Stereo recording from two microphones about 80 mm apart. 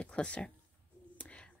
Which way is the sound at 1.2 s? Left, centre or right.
Centre.